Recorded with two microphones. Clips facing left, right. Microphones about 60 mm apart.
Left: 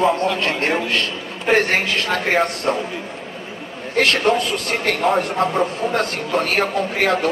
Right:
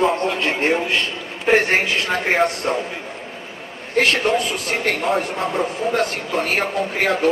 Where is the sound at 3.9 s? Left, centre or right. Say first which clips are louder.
Left 1 dB; centre.